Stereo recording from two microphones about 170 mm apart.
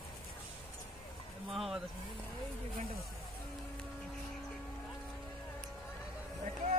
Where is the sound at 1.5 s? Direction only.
Centre (ahead or behind).